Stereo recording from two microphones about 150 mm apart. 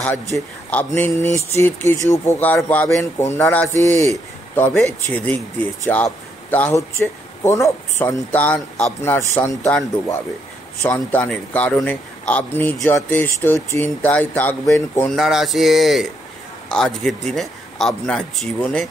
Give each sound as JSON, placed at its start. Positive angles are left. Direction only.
{"t": 0.0, "sound": "speech", "side_deg": 10}
{"t": 10.8, "sound": "speech", "side_deg": 10}
{"t": 15.1, "sound": "speech", "side_deg": 0}